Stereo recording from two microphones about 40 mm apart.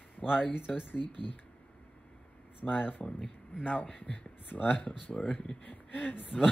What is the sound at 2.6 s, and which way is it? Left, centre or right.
Speech, left.